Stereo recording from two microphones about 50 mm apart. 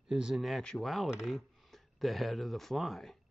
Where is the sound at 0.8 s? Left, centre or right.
Centre.